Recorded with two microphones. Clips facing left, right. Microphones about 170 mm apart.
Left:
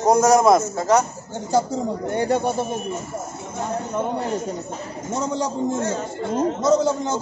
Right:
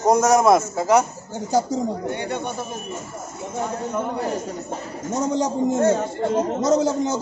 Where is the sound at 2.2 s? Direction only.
40° left (ahead or behind).